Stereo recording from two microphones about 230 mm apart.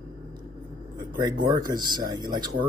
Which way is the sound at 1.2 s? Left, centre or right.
Centre.